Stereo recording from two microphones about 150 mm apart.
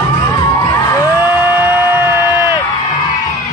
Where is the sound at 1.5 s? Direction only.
15° right (ahead or behind).